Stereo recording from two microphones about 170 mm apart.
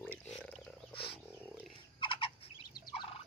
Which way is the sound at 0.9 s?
30° left (ahead or behind).